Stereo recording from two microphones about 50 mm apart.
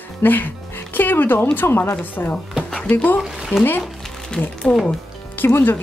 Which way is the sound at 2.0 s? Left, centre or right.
Left.